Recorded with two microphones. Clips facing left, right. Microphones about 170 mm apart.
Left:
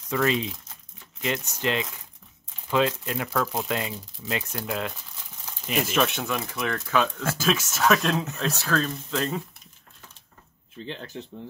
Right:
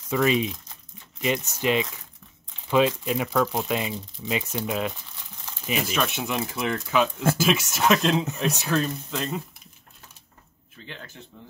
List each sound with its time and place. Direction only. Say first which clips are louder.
0.1 s speech: right 2 dB; 10° right (ahead or behind)
5.7 s speech: left 2 dB; centre (ahead or behind)
6.2 s speech: right 2 dB; 25° right (ahead or behind)
6.9 s speech: right 3 dB; 10° right (ahead or behind)
9.1 s speech: left 6 dB; centre (ahead or behind)
10.8 s speech: left 8 dB; 25° left (ahead or behind)